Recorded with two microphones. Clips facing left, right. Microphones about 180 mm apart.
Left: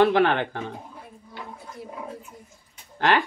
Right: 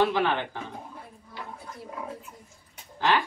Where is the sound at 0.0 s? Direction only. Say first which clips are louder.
Left 5 dB; 65° left (ahead or behind).